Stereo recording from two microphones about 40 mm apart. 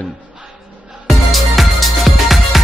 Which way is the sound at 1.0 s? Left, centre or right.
Centre.